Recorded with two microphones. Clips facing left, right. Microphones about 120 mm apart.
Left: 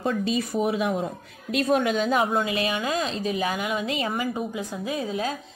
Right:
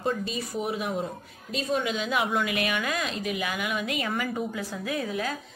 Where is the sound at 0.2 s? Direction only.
90° left.